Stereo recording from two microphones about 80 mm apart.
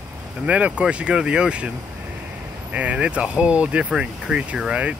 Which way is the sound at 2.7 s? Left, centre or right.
Centre.